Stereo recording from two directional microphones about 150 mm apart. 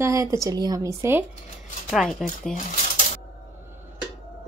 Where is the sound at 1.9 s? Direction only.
Centre (ahead or behind).